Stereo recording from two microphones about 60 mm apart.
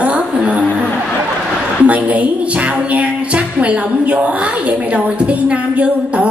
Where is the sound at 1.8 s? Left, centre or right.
Right.